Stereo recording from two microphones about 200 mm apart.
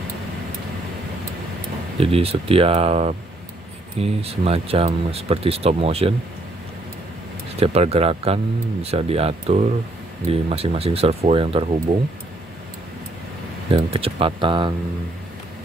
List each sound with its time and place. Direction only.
2.0 s speech: 30° right (ahead or behind)
7.5 s speech: 30° right (ahead or behind)
13.7 s speech: 25° right (ahead or behind)